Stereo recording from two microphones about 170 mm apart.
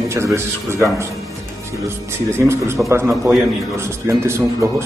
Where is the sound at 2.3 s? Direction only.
15° right (ahead or behind).